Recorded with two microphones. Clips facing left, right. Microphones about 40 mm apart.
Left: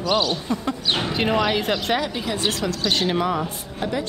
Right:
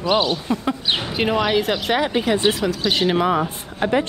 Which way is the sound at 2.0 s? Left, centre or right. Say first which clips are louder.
Right 6 dB; right.